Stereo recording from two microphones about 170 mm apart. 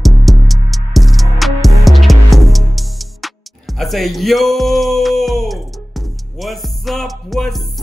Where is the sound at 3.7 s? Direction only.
Centre (ahead or behind).